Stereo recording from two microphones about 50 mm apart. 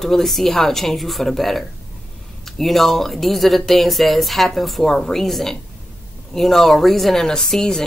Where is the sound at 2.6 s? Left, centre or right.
Centre.